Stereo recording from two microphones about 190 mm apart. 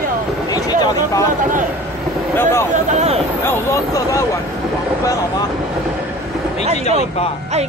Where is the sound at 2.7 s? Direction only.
35° right (ahead or behind).